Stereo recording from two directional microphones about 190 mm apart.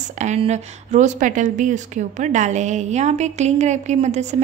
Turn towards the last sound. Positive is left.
turn(degrees=-35)  # may be behind; listen again after turning